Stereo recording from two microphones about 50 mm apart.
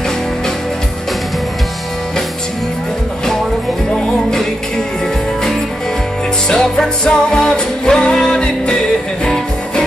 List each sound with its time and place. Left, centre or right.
3.9 s music: centre
6.5 s music: centre